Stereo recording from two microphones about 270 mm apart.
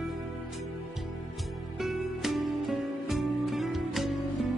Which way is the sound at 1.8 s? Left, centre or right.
Centre.